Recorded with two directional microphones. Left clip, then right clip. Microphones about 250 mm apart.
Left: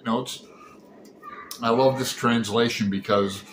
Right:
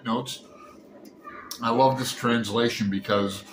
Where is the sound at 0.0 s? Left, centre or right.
Centre.